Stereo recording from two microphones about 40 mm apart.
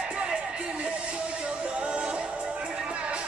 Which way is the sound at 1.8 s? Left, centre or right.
Right.